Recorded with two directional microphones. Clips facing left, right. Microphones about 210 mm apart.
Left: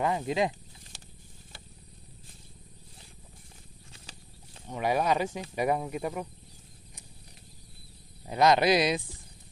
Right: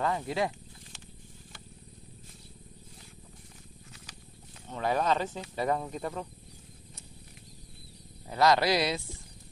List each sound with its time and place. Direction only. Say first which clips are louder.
0.0 s speech: left 2 dB; 20° left (ahead or behind)
4.6 s speech: left 1 dB; 15° left (ahead or behind)
8.3 s speech: left 2 dB; 20° left (ahead or behind)